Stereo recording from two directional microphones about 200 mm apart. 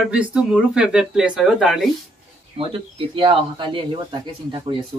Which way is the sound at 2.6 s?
25° right (ahead or behind).